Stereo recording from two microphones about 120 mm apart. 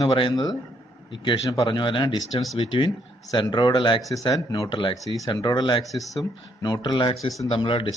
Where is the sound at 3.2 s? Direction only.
35° left (ahead or behind).